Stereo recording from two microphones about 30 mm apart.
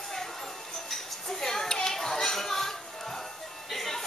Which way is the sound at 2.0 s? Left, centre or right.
Centre.